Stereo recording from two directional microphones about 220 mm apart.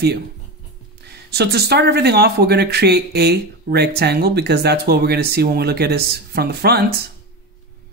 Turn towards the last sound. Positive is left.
turn(degrees=-45)  # may be behind; listen again after turning